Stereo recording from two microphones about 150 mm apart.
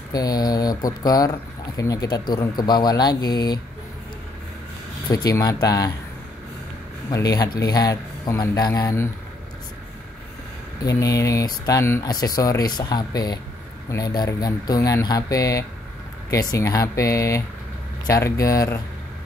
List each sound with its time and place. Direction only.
0.1 s speech: 25° left (ahead or behind)
5.0 s speech: 25° left (ahead or behind)
7.1 s speech: 25° left (ahead or behind)
10.8 s speech: 25° left (ahead or behind)